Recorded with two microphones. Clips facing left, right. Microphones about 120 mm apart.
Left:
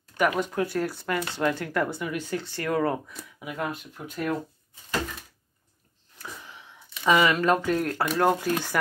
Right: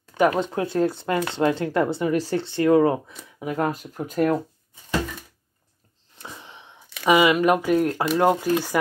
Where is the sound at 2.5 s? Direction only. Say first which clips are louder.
Right 9 dB; 20° right (ahead or behind).